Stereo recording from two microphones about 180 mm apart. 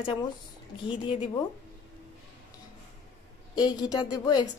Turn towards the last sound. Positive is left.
turn(degrees=25)  # may be behind; listen again after turning